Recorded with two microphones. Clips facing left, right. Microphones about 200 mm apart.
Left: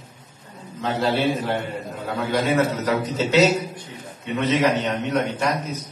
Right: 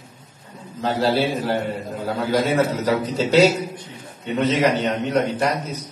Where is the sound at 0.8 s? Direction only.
35° right (ahead or behind).